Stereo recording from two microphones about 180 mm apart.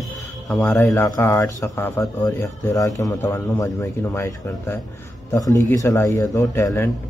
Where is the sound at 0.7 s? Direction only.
15° left (ahead or behind).